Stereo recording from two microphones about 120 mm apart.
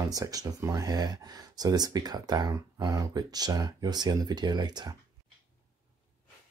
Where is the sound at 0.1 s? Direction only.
30° right (ahead or behind).